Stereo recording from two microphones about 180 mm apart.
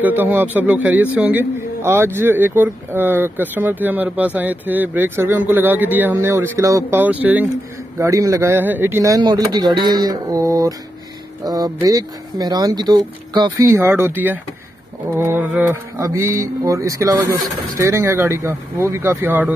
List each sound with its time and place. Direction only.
0.0 s speech: 10° right (ahead or behind)